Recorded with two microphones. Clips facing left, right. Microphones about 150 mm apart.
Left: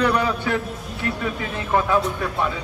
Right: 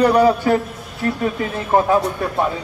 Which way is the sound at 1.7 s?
40° right (ahead or behind).